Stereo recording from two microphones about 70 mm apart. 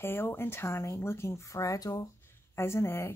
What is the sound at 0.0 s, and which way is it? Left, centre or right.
Speech, left.